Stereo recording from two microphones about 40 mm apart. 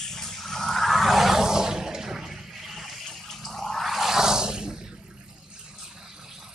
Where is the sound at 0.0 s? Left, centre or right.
Centre.